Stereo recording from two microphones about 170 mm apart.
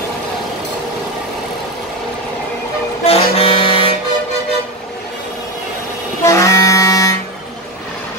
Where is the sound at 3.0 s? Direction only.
35° left (ahead or behind).